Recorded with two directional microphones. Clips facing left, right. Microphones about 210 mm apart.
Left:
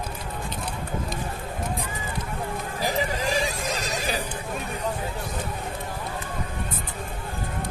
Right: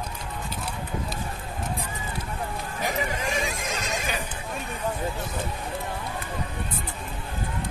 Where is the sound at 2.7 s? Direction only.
35° left (ahead or behind).